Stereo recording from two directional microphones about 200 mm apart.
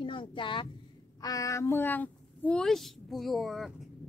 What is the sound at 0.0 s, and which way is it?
A woman's voice, 25° left (ahead or behind).